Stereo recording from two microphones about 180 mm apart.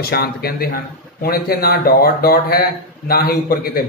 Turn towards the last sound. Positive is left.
turn(degrees=55)  # may be behind; listen again after turning